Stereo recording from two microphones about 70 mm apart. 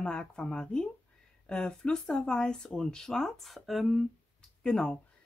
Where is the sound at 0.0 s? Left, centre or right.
Centre.